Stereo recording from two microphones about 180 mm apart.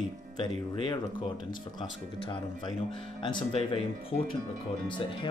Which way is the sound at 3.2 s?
30° left (ahead or behind).